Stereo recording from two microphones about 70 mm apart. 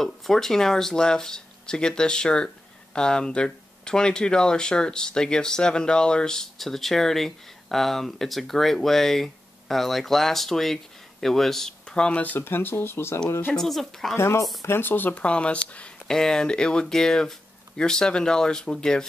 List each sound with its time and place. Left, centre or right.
0.0 s speech: centre; by 13.2 s left
13.6 s speech: centre
14.1 s speech: left
14.7 s speech: left; by 19.0 s centre